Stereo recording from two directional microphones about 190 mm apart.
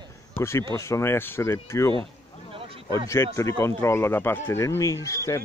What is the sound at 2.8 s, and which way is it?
Speech, 15° left (ahead or behind).